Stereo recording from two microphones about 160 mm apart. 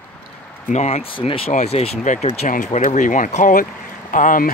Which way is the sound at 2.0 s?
50° left (ahead or behind).